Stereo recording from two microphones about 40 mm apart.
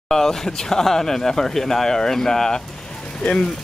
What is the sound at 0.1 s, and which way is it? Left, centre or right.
Speech, centre.